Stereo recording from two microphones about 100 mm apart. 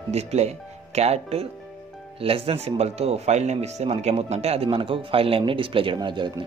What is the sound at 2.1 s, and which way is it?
Speech, 70° right (ahead or behind).